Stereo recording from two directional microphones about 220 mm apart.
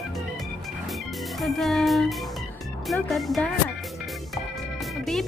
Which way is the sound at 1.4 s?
Centre (ahead or behind).